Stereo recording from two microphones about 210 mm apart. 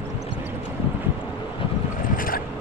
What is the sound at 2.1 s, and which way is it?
Boat, 40° left (ahead or behind).